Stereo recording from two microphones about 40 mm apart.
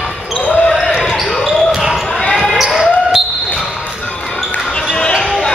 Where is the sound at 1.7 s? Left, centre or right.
Centre.